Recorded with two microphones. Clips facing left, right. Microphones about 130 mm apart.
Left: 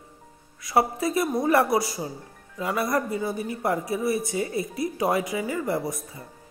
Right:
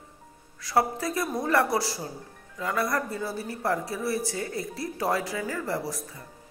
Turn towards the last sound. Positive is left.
turn(degrees=20)  # may be behind; listen again after turning